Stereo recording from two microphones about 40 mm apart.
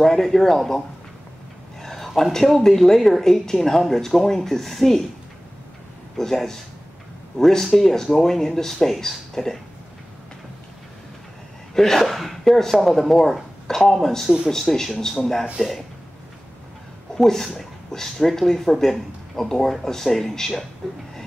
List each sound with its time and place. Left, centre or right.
0.0 s speech: centre
1.8 s a sound: centre
2.3 s speech: centre
6.1 s speech: centre
11.7 s speech: centre
15.6 s speech: centre
17.2 s speech: centre